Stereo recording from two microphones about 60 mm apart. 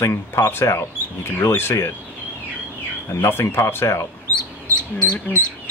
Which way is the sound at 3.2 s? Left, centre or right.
Left.